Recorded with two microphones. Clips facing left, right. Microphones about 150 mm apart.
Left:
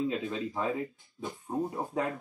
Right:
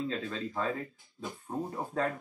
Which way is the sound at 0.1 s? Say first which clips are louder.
Left 2 dB; 15° left (ahead or behind).